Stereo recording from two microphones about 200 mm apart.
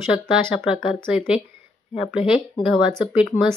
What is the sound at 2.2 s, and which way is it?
Speech, 25° left (ahead or behind).